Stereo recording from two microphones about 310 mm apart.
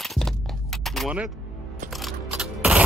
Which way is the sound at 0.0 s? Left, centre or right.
Centre.